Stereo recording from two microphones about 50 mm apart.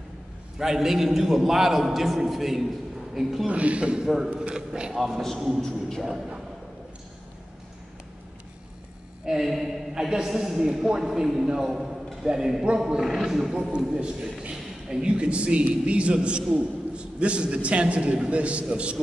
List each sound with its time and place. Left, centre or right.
0.6 s a man's voice: centre
3.4 s a man's voice: right
4.9 s a man's voice: centre
5.6 s speech: centre
9.2 s a man's voice: centre